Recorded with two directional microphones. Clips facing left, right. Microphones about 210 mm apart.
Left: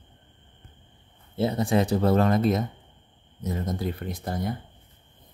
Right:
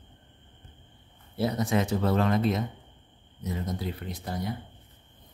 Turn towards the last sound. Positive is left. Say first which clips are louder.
# left 3 dB
turn(degrees=50)  # may be behind; listen again after turning